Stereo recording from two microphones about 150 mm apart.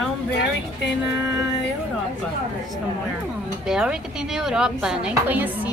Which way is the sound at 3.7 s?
5° right (ahead or behind).